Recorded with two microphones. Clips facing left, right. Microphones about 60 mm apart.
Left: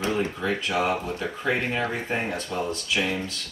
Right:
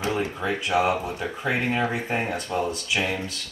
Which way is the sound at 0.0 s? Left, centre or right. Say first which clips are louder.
Even; centre.